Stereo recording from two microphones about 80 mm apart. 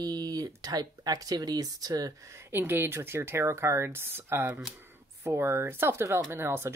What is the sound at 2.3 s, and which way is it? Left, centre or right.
Speech, right.